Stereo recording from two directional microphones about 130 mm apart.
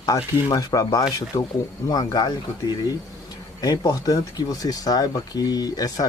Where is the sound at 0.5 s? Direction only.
30° left (ahead or behind).